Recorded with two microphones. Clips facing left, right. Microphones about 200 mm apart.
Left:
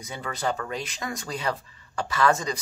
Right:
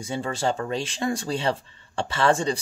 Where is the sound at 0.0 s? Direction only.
30° right (ahead or behind).